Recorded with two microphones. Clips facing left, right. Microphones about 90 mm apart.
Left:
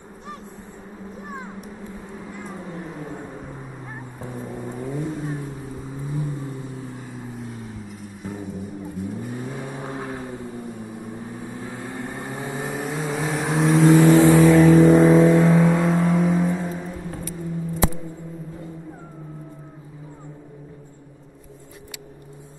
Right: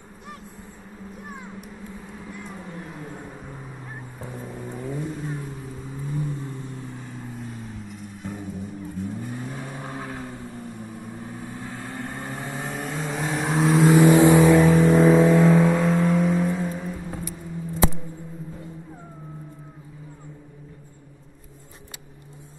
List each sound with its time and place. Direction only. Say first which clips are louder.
2.7 s a sound: left 4 dB; 5° left (ahead or behind)
4.2 s vehicle: left 4 dB; 5° left (ahead or behind)
9.5 s vehicle: left 3 dB; 15° left (ahead or behind)
11.5 s vehicle: left 2 dB; 15° left (ahead or behind); by 13.9 s centre (ahead or behind)
13.9 s vehicle: even; 15° right (ahead or behind)
14.6 s vehicle: left 4 dB; centre (ahead or behind)